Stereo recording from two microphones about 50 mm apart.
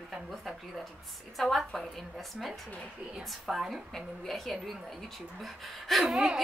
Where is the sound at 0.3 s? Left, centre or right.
Centre.